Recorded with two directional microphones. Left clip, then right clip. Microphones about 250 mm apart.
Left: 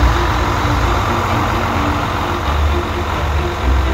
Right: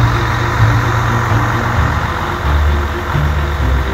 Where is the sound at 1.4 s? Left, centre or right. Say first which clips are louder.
Right 1 dB; left.